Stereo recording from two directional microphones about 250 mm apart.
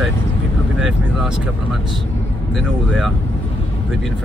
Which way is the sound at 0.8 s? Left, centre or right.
Centre.